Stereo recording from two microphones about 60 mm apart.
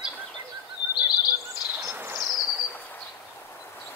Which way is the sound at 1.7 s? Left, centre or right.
Right.